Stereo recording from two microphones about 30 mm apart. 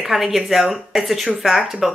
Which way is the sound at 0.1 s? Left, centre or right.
Centre.